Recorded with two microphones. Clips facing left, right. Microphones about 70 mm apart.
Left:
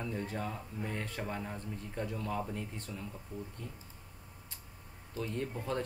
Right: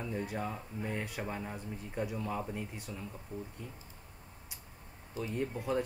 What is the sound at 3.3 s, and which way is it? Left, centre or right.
Speech, right.